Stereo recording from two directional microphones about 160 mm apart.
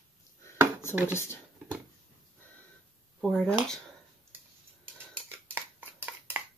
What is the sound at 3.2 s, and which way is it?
Speech, centre (ahead or behind).